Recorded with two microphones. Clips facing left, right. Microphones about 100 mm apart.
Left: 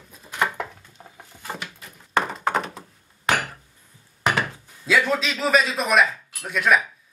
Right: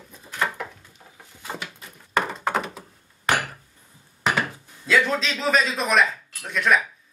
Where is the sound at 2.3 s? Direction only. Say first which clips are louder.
Left 1 dB; centre (ahead or behind).